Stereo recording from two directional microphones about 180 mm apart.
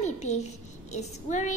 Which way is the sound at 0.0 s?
40° left (ahead or behind).